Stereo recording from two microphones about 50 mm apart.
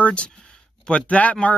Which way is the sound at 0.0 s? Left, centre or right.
Left.